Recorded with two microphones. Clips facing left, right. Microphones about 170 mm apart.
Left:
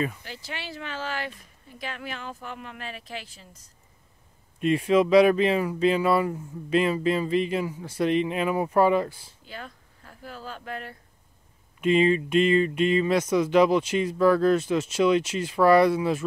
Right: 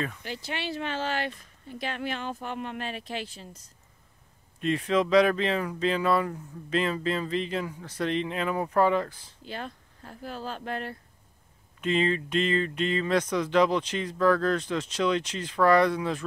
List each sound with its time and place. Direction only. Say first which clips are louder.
0.2 s speech: right 4 dB; 20° right (ahead or behind)
4.6 s speech: left 4 dB; 10° left (ahead or behind)
9.5 s speech: right 3 dB; 30° right (ahead or behind)
11.8 s speech: left 5 dB; 10° left (ahead or behind)